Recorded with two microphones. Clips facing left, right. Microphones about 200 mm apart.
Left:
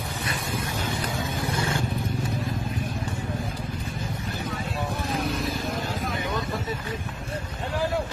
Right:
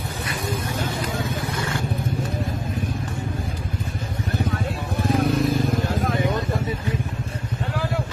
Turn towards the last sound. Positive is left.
turn(degrees=-50)  # may be behind; listen again after turning